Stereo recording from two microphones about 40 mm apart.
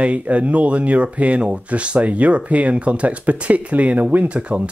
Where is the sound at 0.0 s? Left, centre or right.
Right.